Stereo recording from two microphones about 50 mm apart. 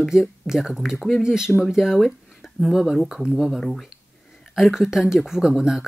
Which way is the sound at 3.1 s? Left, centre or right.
Centre.